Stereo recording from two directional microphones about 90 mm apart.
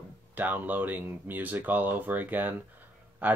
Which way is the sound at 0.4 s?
20° right (ahead or behind).